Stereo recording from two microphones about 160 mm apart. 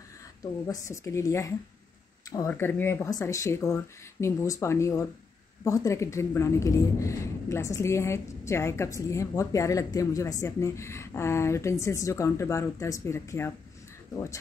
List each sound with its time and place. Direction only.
0.4 s a woman's voice: 20° left (ahead or behind)